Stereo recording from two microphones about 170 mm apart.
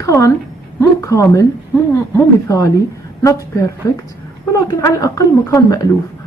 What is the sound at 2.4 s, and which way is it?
A woman's voice, 20° left (ahead or behind).